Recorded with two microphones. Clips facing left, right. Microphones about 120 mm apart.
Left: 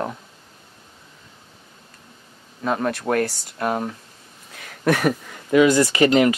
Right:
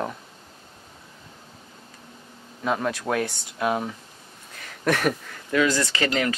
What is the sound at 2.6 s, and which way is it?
Speech, centre (ahead or behind).